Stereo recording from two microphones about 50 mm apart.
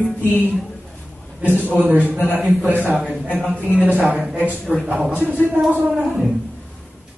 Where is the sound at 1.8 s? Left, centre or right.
Right.